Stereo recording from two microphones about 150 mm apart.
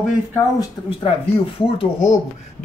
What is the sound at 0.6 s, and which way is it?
Speech, 35° left (ahead or behind).